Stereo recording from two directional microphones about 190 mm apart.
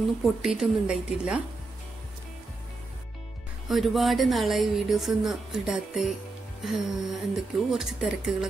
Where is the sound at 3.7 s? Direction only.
Centre (ahead or behind).